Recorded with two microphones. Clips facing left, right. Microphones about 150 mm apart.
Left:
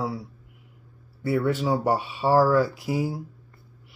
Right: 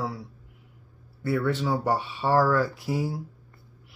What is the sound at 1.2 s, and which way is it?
Speech, 10° left (ahead or behind).